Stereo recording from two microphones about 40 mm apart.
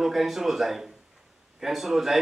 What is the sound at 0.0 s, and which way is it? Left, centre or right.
Speech, centre.